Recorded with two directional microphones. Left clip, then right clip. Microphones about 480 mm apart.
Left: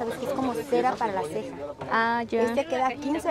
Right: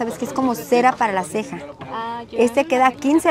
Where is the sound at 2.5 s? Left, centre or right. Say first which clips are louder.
Right 9 dB; right.